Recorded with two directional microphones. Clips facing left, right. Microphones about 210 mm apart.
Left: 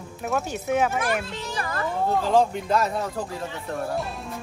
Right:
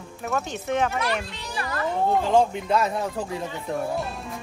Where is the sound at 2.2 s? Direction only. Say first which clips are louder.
Even; centre (ahead or behind).